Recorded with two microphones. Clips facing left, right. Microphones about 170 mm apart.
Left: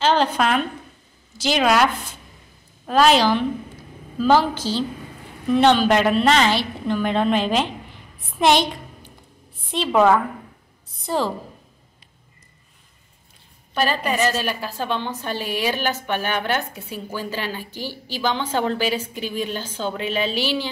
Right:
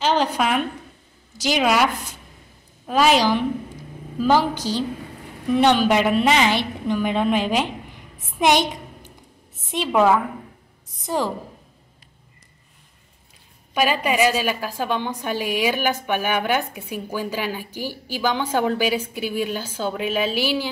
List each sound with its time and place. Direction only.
0.0 s a sound: 15° right (ahead or behind)
0.4 s a woman's voice: 10° right (ahead or behind)
2.9 s a woman's voice: 10° right (ahead or behind)
9.9 s a woman's voice: 5° right (ahead or behind)
13.7 s a woman's voice: 10° right (ahead or behind)